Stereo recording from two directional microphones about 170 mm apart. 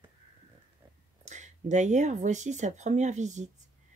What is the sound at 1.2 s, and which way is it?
Speech, 45° right (ahead or behind).